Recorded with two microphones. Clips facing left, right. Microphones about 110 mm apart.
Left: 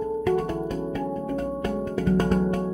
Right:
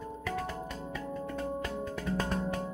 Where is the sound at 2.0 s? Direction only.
50° left (ahead or behind).